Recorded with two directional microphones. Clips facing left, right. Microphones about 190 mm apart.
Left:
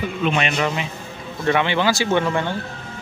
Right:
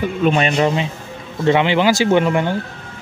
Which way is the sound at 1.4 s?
20° right (ahead or behind).